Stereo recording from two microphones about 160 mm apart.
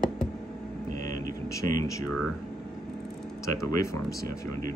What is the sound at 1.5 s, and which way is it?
Speech, 20° left (ahead or behind).